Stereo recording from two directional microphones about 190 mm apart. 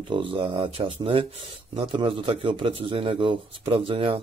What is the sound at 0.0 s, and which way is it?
Speech, 25° right (ahead or behind).